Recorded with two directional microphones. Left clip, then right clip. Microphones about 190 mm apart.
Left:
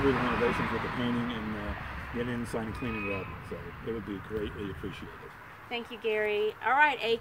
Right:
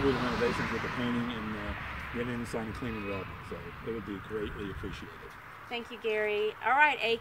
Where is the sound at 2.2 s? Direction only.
Centre (ahead or behind).